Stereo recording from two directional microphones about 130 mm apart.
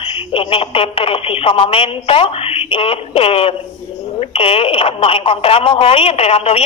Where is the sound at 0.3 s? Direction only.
40° left (ahead or behind).